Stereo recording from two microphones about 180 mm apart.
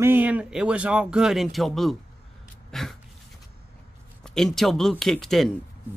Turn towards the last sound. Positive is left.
turn(degrees=0)  # may be behind; listen again after turning